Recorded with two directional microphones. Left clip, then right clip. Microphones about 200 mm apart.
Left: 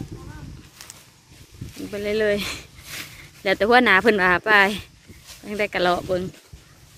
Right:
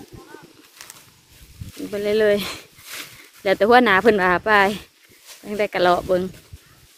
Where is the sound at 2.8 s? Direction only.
50° right (ahead or behind).